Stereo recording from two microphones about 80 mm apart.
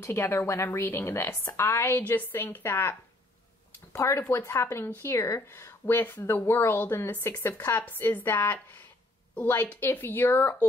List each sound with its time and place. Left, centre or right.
0.0 s a woman's voice: left
3.9 s a woman's voice: left